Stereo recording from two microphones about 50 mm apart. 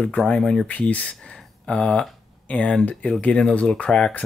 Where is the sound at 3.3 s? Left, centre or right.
Centre.